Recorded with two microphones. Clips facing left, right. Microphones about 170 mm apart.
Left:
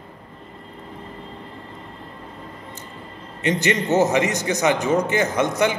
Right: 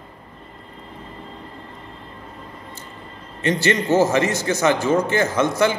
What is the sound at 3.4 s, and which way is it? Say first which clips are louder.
A man's voice: right 1 dB; 20° left (ahead or behind).